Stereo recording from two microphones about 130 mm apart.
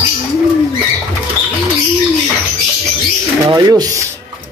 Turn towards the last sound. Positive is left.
turn(degrees=-30)  # may be behind; listen again after turning